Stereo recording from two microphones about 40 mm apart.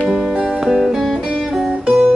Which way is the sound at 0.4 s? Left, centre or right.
Centre.